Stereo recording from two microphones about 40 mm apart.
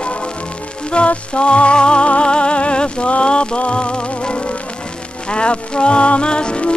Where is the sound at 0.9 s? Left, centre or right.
Left.